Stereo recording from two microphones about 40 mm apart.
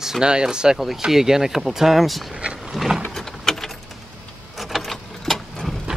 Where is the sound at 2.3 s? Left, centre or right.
Right.